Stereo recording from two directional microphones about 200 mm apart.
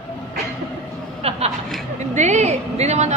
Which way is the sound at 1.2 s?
30° right (ahead or behind).